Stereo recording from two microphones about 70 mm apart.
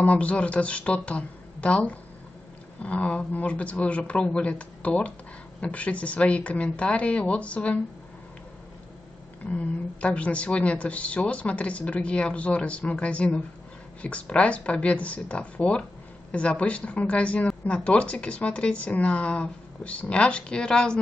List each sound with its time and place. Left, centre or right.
0.0 s speech: left
9.5 s speech: centre